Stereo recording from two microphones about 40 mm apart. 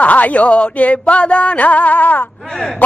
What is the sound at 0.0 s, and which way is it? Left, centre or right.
Speech, left.